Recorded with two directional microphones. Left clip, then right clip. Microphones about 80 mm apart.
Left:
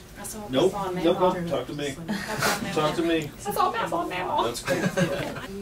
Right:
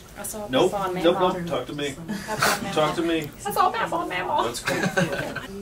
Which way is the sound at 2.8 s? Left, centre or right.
Centre.